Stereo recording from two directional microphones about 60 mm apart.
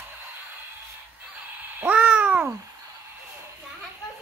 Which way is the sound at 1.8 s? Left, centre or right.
Right.